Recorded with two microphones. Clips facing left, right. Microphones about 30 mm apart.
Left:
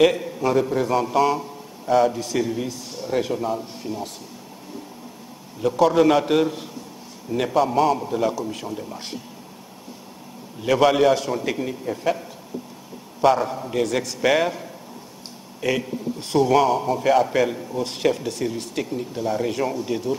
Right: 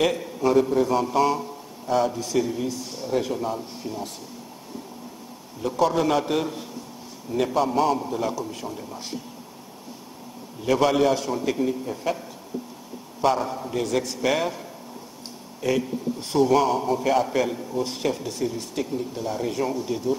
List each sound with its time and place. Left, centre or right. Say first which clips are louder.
0.0 s a man's voice: left 4 dB; centre
5.6 s a man's voice: left 5 dB; centre
7.5 s a man's voice: left 4 dB; centre
10.7 s a man's voice: left 3 dB; centre